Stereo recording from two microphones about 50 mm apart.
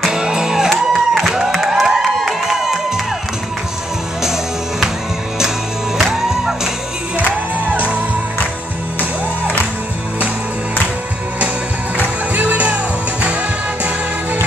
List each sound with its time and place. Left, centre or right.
0.1 s music: centre
1.5 s a sound: centre
4.2 s music: centre
6.0 s music: centre
7.2 s music: right
12.4 s music: right